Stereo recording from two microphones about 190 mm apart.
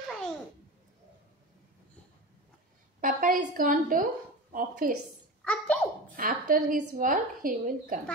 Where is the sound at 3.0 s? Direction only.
45° right (ahead or behind).